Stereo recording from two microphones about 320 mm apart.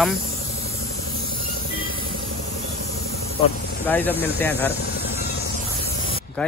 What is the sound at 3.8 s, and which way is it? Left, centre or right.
Speech, centre.